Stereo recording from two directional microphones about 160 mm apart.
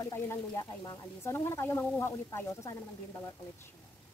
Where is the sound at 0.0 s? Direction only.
20° left (ahead or behind).